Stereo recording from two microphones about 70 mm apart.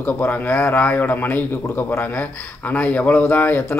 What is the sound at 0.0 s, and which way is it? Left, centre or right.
A man's voice, left.